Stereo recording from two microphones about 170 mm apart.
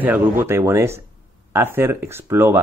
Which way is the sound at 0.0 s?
10° right (ahead or behind).